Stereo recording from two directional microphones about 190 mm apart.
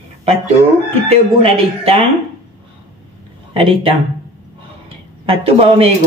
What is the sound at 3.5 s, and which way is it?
Speech, 30° right (ahead or behind).